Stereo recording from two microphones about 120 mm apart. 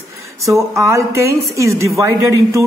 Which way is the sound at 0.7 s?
25° right (ahead or behind).